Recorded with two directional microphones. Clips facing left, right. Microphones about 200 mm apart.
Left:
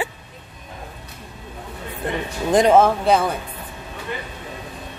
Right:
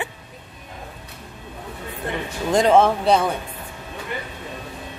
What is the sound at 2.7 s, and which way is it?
Speech, 5° left (ahead or behind).